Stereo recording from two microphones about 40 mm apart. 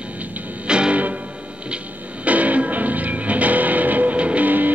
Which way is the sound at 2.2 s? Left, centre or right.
Right.